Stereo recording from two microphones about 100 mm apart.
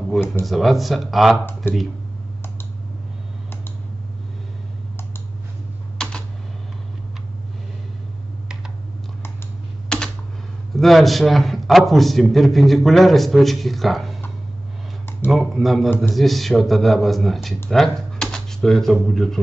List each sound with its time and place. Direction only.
0.1 s a man's voice: 5° left (ahead or behind)
1.4 s speech: 20° left (ahead or behind)
9.8 s typing: 5° left (ahead or behind)
10.8 s a man's voice: centre (ahead or behind)
15.3 s a man's voice: centre (ahead or behind)
17.6 s computer keyboard: centre (ahead or behind)
19.0 s a man's voice: centre (ahead or behind)